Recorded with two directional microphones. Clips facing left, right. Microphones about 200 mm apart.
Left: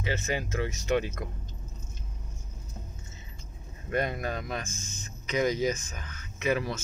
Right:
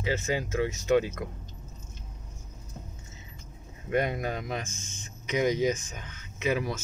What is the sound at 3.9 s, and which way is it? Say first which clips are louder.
Speech: right 2 dB; 15° right (ahead or behind).